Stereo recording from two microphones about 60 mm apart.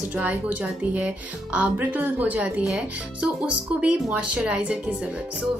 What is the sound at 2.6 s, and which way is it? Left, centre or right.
Speech, centre.